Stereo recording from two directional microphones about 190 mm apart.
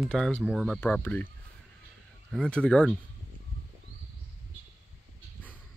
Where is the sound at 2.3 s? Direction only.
5° left (ahead or behind).